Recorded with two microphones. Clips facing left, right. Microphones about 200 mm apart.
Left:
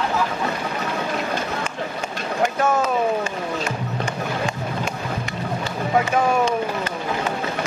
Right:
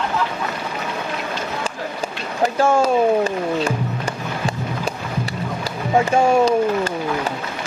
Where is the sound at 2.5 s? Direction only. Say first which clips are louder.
Right 7 dB; 30° right (ahead or behind).